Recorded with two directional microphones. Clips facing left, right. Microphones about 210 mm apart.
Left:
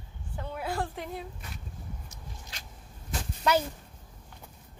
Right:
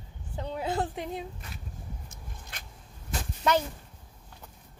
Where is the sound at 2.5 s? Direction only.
55° right (ahead or behind).